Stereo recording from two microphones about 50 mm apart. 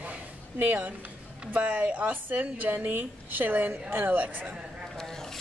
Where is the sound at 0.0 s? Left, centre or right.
Right.